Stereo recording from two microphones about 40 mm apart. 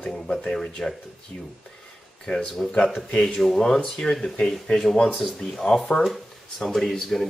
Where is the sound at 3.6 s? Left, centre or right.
Centre.